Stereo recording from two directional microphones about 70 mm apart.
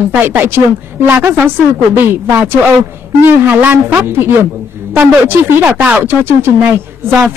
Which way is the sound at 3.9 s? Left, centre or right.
Right.